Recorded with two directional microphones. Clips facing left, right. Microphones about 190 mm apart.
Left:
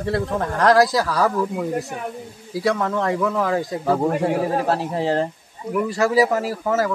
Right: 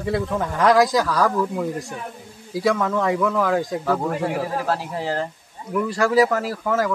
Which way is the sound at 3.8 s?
25° left (ahead or behind).